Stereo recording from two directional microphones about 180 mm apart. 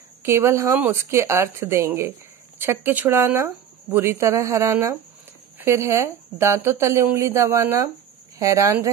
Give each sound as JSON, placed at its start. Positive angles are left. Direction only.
{"t": 0.2, "sound": "speech", "side_deg": -15}